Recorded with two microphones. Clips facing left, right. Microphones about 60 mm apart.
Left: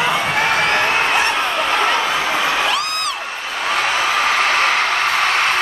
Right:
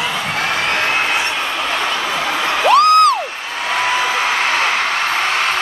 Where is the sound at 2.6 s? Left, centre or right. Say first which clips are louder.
Right 11 dB; right.